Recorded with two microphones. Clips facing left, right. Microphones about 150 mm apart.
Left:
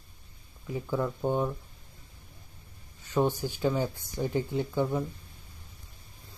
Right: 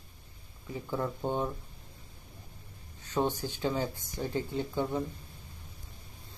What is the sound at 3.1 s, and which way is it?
Speech, 15° left (ahead or behind).